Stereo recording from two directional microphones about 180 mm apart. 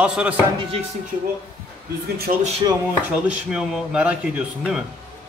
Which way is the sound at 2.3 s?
45° right (ahead or behind).